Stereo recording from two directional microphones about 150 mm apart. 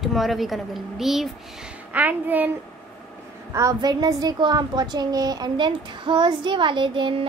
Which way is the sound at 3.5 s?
25° right (ahead or behind).